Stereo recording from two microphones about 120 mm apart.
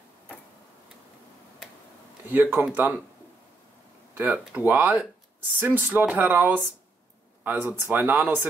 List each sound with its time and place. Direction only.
2.3 s speech: 15° right (ahead or behind)
4.2 s speech: 10° right (ahead or behind)